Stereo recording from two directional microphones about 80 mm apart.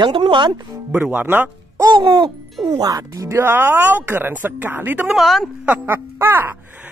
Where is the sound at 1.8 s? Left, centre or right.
Right.